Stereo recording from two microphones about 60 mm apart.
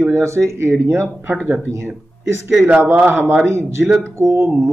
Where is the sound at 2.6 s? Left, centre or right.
Right.